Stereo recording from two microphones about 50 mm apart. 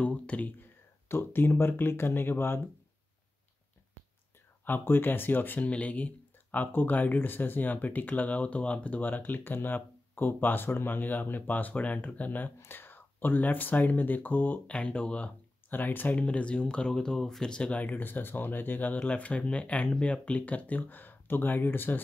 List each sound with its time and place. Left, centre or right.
0.0 s speech: left
1.0 s speech: left
4.6 s speech: left
5.7 s speech: left
14.7 s speech: left
15.7 s speech: left
16.2 s speech: left; by 17.5 s centre
17.5 s speech: left
19.0 s speech: left